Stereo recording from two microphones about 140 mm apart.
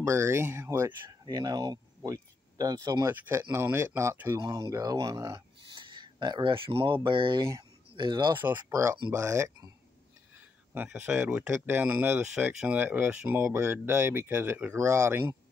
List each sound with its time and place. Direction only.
0.0 s speech: 20° right (ahead or behind)
5.7 s a sound: 35° right (ahead or behind)
7.1 s speech: 35° right (ahead or behind)
8.4 s speech: 15° right (ahead or behind)
10.7 s speech: 15° right (ahead or behind)